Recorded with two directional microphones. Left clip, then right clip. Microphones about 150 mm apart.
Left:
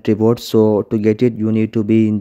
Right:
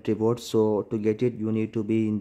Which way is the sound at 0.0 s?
35° left (ahead or behind).